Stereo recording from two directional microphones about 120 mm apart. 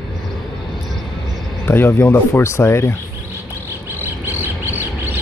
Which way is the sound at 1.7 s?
20° left (ahead or behind).